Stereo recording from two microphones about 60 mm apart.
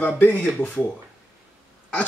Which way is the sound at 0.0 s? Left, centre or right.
Left.